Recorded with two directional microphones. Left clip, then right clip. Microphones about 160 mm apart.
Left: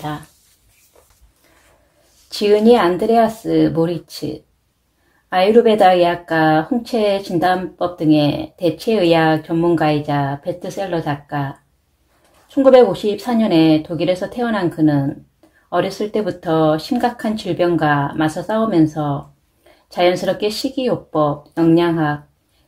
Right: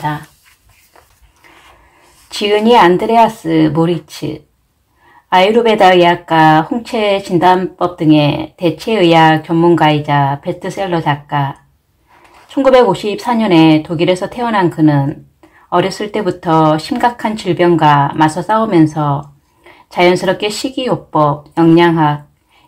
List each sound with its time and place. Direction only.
2.2 s speech: 30° left (ahead or behind)
12.5 s speech: 30° left (ahead or behind)